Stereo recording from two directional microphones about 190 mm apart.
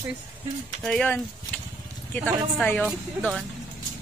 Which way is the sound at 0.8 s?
5° left (ahead or behind).